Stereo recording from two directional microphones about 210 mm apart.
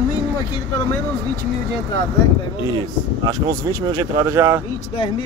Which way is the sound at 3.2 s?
20° right (ahead or behind).